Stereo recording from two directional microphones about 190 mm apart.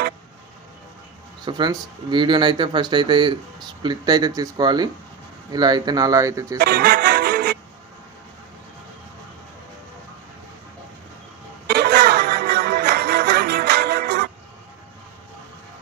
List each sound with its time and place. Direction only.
1.4 s speech: 25° right (ahead or behind)
6.6 s music: 55° right (ahead or behind)
11.6 s music: 60° right (ahead or behind)